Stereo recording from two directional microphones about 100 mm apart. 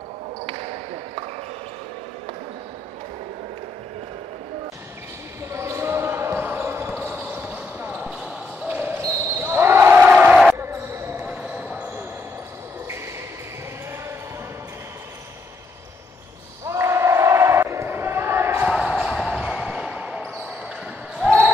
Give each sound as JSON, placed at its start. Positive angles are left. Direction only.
{"t": 5.5, "sound": "basketball bounce", "side_deg": -25}
{"t": 10.6, "sound": "basketball bounce", "side_deg": -25}
{"t": 16.6, "sound": "basketball bounce", "side_deg": -30}
{"t": 18.7, "sound": "basketball bounce", "side_deg": -5}